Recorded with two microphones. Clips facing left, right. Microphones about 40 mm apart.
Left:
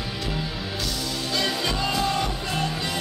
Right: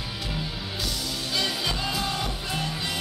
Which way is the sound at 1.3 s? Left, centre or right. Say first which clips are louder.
Left 2 dB; centre.